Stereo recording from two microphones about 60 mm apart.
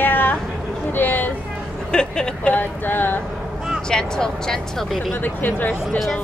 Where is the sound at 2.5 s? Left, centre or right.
Left.